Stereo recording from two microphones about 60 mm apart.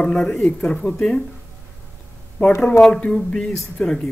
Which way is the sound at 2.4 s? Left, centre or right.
Left.